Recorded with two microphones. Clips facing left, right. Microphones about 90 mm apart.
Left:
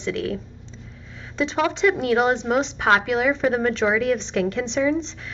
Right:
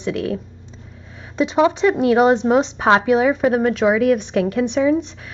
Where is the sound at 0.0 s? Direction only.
20° right (ahead or behind).